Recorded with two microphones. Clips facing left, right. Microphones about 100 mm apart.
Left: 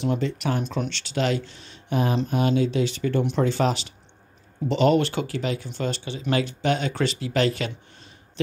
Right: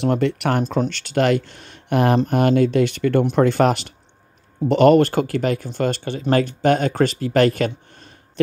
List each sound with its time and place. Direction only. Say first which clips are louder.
0.0 s speech: right 6 dB; 65° right (ahead or behind)
0.7 s speech: right 7 dB; 45° right (ahead or behind)